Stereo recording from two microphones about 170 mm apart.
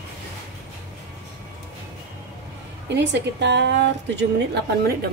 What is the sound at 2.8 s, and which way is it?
A woman's voice, 90° right.